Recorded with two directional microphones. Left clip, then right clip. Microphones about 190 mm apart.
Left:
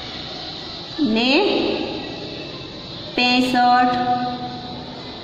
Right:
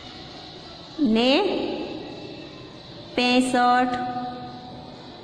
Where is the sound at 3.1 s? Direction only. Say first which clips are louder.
Left 3 dB; 30° right (ahead or behind).